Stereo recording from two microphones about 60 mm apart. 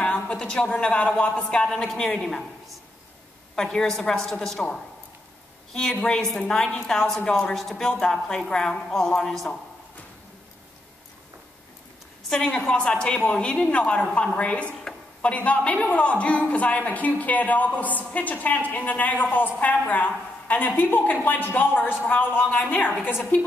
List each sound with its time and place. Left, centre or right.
0.0 s a woman's voice: centre
3.5 s a woman's voice: centre
7.5 s a woman's voice: centre
12.3 s a woman's voice: centre; by 23.5 s left